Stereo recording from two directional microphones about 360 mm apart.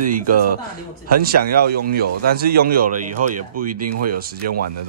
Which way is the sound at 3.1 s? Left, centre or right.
Right.